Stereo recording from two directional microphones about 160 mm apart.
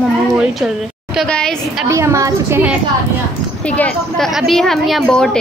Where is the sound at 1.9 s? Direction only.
20° right (ahead or behind).